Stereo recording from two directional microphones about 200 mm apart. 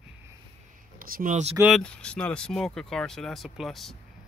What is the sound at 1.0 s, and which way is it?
Speech, 40° right (ahead or behind).